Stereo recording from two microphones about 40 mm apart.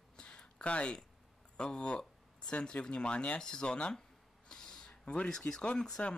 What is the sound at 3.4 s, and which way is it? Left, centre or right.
Speech, left.